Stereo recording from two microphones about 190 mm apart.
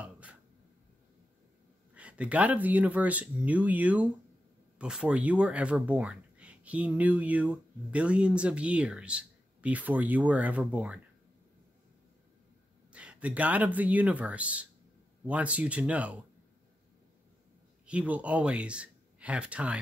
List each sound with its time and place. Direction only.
0.0 s a sound: 5° right (ahead or behind)
2.0 s speech: 5° right (ahead or behind)
12.9 s speech: 5° right (ahead or behind)
17.8 s speech: 5° right (ahead or behind)